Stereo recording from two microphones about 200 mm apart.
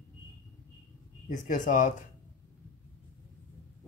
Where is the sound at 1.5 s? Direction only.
40° left (ahead or behind).